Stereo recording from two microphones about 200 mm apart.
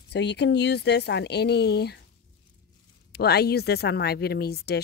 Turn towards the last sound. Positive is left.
turn(degrees=55)  # may be behind; listen again after turning